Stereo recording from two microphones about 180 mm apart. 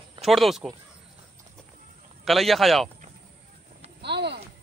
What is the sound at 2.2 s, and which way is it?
Speech, centre (ahead or behind).